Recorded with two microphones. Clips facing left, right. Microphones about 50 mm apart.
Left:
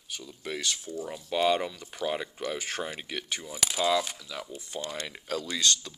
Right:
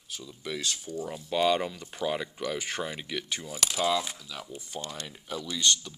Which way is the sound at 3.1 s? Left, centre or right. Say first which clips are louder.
Right 1 dB; left.